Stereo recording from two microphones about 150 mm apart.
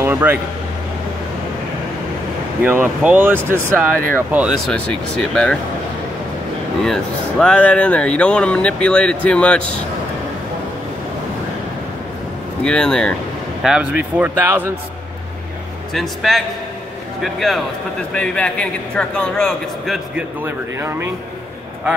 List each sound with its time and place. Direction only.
0.0 s speech: 15° right (ahead or behind)
2.6 s speech: 15° right (ahead or behind)
4.6 s speech: 5° left (ahead or behind)
6.8 s speech: 5° left (ahead or behind)
12.6 s speech: 5° left (ahead or behind)
13.6 s speech: 5° right (ahead or behind)
15.9 s speech: centre (ahead or behind)
20.4 s speech: 15° right (ahead or behind)